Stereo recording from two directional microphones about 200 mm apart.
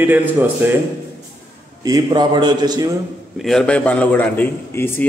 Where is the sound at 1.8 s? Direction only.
20° right (ahead or behind).